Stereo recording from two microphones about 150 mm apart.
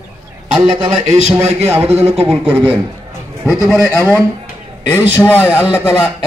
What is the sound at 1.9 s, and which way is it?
Speech, 40° right (ahead or behind).